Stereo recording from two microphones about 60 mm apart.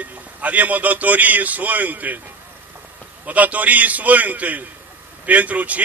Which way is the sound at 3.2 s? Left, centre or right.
Right.